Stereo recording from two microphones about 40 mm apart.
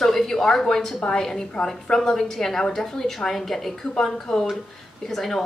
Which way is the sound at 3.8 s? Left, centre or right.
Centre.